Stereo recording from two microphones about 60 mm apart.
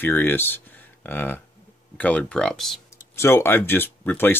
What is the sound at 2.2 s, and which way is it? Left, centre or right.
Speech, centre.